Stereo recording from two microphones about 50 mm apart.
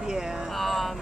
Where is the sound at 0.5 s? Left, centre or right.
Centre.